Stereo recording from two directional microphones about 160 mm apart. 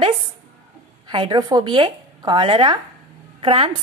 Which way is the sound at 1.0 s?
30° right (ahead or behind).